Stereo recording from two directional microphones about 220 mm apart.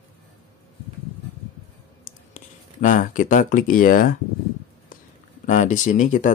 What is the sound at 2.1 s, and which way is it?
Speech, 35° left (ahead or behind).